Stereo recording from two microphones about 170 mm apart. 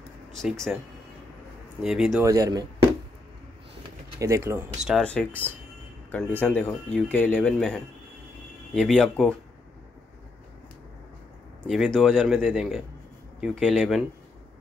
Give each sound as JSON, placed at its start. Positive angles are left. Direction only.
{"t": 0.3, "sound": "speech", "side_deg": 0}
{"t": 1.8, "sound": "speech", "side_deg": 0}
{"t": 2.2, "sound": "speech", "side_deg": -20}
{"t": 4.2, "sound": "speech", "side_deg": -15}
{"t": 4.8, "sound": "speech", "side_deg": 5}
{"t": 11.6, "sound": "speech", "side_deg": 0}